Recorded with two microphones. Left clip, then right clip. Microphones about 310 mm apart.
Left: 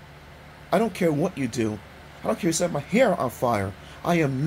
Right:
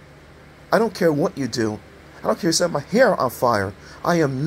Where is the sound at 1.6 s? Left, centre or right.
Centre.